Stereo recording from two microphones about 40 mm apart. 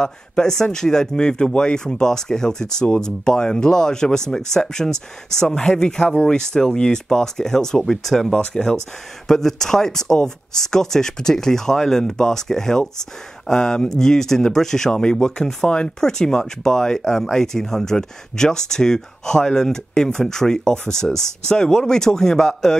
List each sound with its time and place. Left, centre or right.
0.0 s speech: centre
8.4 s speech: left
9.3 s speech: centre
14.9 s speech: left